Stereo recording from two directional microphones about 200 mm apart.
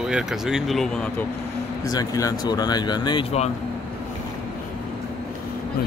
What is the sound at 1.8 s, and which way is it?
Speech, 15° left (ahead or behind).